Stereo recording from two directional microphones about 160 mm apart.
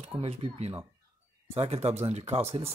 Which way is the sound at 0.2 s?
40° right (ahead or behind).